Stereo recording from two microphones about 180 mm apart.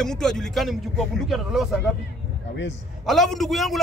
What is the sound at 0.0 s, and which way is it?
A man's voice, 5° left (ahead or behind).